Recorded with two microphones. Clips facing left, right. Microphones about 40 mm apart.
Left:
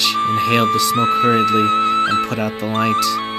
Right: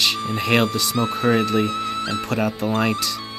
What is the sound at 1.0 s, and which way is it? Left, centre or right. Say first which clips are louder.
Speech: left 3 dB; left.